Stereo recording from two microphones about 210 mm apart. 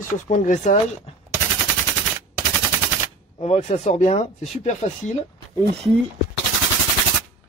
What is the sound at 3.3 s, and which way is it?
Speech, 30° left (ahead or behind).